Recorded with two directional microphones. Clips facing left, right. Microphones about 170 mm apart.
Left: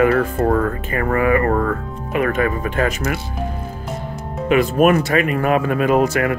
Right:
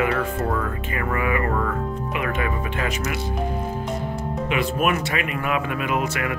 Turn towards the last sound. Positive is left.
turn(degrees=40)  # may be behind; listen again after turning